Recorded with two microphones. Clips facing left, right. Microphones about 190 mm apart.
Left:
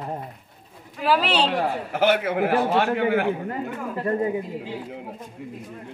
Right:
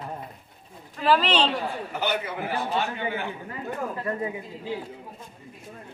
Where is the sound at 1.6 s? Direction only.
90° left; by 3.6 s 60° left (ahead or behind).